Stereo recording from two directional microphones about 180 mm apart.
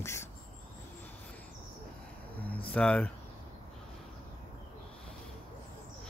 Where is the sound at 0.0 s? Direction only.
15° left (ahead or behind).